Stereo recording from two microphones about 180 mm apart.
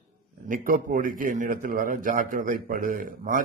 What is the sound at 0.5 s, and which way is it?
A man's voice, 50° right (ahead or behind).